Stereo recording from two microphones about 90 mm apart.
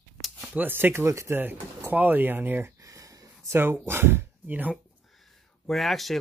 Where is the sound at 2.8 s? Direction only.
40° right (ahead or behind).